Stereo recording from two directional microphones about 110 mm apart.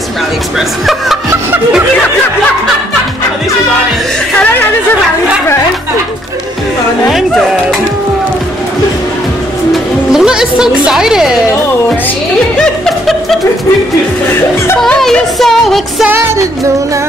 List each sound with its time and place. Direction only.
0.6 s music: centre (ahead or behind)
7.1 s speech: centre (ahead or behind)
10.1 s music: 5° right (ahead or behind)
12.5 s music: centre (ahead or behind)
14.8 s music: 5° left (ahead or behind)
16.1 s music: 20° right (ahead or behind)